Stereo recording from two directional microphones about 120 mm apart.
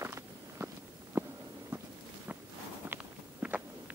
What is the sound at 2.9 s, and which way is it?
Walk, 10° right (ahead or behind).